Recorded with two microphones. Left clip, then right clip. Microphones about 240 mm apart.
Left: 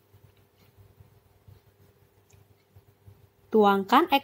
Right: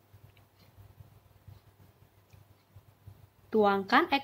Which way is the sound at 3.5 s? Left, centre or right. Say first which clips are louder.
Left 5 dB; centre.